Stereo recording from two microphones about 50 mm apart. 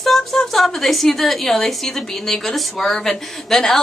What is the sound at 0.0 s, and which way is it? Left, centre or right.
A woman's voice, centre.